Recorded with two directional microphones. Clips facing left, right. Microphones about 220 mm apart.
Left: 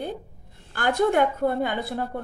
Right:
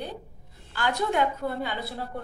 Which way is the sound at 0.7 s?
50° left (ahead or behind).